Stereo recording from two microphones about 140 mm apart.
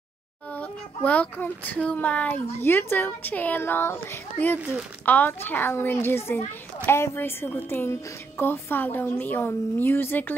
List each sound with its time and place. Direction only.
0.5 s a child's voice: 10° left (ahead or behind)